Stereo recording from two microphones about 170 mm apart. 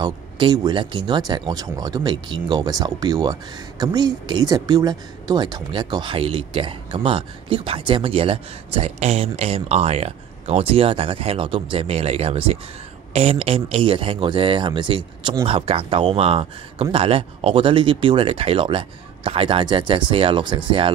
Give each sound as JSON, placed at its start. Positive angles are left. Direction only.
{"t": 0.0, "sound": "speech", "side_deg": -25}